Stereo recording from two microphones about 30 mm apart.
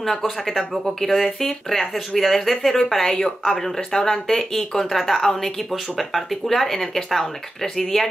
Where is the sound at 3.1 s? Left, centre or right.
Left.